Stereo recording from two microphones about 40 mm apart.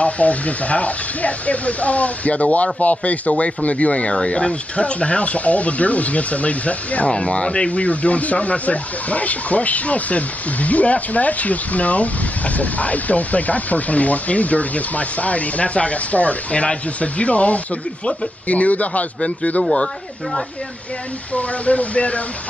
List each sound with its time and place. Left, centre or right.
0.0 s speech: left
21.3 s speech: left